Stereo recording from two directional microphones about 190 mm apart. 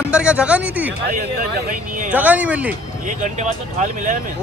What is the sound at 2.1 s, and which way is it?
Speech, 10° right (ahead or behind).